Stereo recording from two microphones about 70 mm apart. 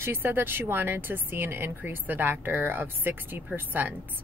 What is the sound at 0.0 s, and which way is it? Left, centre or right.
Speech, right.